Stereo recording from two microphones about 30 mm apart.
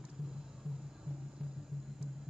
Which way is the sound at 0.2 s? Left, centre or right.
Right.